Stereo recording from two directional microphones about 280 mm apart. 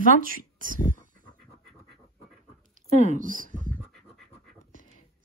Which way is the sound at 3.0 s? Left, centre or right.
Right.